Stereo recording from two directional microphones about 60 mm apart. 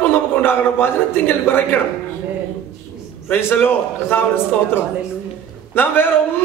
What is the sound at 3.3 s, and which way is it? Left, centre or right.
Speech, left.